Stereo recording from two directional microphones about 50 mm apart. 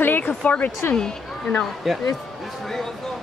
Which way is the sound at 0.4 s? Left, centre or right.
Left.